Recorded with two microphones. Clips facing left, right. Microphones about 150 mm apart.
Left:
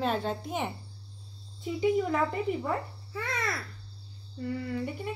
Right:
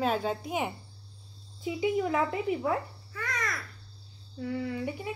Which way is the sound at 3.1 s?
30° left (ahead or behind).